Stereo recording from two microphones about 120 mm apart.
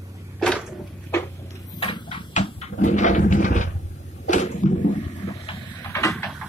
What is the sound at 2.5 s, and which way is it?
Dog, 90° left.